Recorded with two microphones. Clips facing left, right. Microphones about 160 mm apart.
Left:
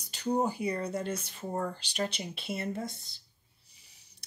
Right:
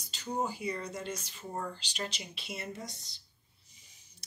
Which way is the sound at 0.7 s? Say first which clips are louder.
Left 4 dB; 30° left (ahead or behind).